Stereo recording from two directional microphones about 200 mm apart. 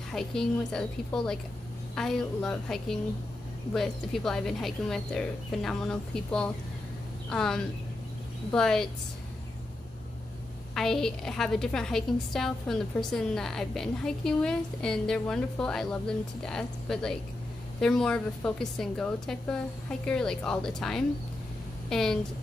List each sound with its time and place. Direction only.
0.1 s a woman's voice: 5° left (ahead or behind)
10.7 s a woman's voice: centre (ahead or behind)